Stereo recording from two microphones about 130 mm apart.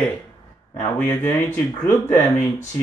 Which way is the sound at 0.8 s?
20° left (ahead or behind).